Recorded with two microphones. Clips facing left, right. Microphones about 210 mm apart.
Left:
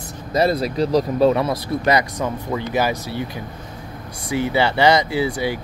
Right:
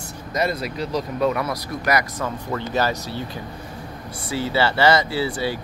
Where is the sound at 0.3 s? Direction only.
35° left (ahead or behind); by 3.3 s 15° left (ahead or behind).